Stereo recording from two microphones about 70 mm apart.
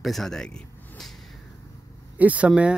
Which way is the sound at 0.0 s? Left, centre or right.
Centre.